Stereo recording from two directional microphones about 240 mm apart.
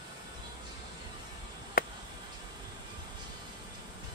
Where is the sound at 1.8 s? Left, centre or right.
Left.